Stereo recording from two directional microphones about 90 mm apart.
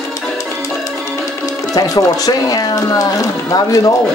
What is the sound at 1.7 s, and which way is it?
Speech, 45° left (ahead or behind).